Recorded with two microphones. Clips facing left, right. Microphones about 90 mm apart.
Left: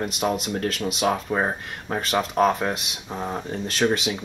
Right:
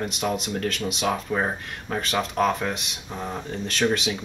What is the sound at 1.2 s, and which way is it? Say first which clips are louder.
Speech: left 1 dB; 15° left (ahead or behind).